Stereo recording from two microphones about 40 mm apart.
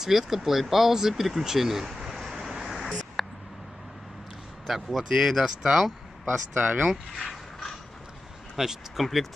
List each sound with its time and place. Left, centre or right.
0.0 s speech: centre
3.2 s a sound: centre
4.6 s speech: centre
6.5 s speech: right
7.2 s a sound: centre
8.5 s speech: centre